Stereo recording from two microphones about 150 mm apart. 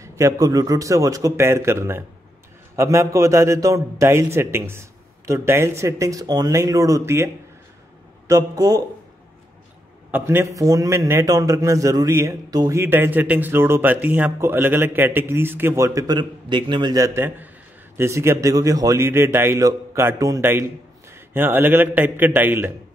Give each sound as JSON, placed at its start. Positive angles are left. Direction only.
{"t": 0.0, "sound": "a man's voice", "side_deg": -20}
{"t": 8.3, "sound": "a man's voice", "side_deg": -20}
{"t": 10.1, "sound": "a man's voice", "side_deg": -15}